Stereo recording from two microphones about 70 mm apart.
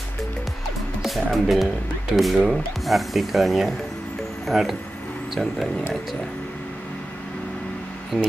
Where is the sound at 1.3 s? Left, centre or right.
Centre.